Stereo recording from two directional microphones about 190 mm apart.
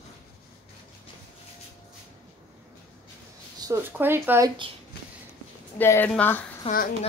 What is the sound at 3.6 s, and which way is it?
Speech, 15° right (ahead or behind).